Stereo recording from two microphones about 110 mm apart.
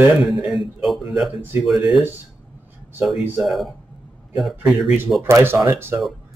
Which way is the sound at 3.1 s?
Centre (ahead or behind).